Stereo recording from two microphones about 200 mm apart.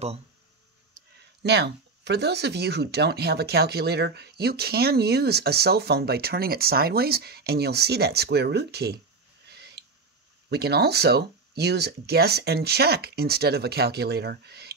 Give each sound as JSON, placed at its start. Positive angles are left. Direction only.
{"t": 1.4, "sound": "speech", "side_deg": -60}
{"t": 9.5, "sound": "a sound", "side_deg": -55}
{"t": 10.5, "sound": "speech", "side_deg": -55}